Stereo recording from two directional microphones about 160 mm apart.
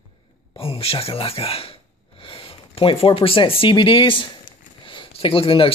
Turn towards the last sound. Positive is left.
turn(degrees=35)  # may be behind; listen again after turning